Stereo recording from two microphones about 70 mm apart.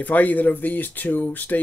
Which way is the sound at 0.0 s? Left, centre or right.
Left.